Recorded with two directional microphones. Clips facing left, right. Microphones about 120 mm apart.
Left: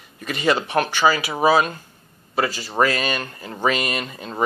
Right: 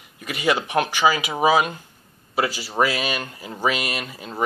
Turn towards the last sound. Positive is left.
turn(degrees=-5)  # may be behind; listen again after turning